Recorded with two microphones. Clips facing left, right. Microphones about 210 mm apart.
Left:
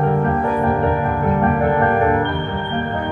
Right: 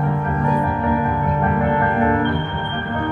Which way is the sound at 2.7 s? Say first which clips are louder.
Left 3 dB; 30° left (ahead or behind).